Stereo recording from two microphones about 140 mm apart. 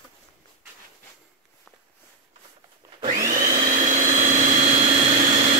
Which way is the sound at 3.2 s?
65° right (ahead or behind).